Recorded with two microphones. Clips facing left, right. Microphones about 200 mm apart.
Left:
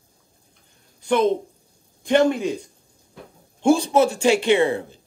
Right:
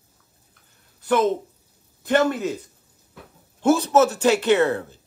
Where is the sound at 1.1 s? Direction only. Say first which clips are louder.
Left 1 dB; 5° right (ahead or behind).